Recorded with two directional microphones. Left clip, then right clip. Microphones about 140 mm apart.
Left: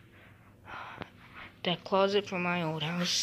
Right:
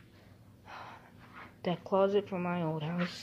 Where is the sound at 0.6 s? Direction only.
25° right (ahead or behind).